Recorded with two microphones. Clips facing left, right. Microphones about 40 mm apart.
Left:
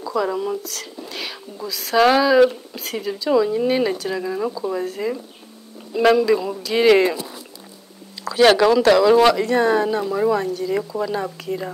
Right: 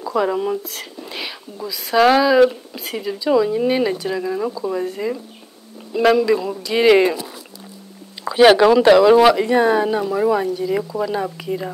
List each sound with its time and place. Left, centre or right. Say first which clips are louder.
0.0 s speech: right 3 dB; centre
0.7 s a sound: even; right
1.1 s speech: right 2 dB; centre
8.2 s speech: right 3 dB; centre